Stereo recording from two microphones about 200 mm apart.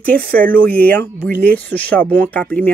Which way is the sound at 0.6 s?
10° left (ahead or behind).